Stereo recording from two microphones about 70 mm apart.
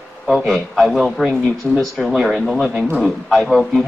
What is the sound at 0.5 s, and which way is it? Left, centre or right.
A man's voice, centre.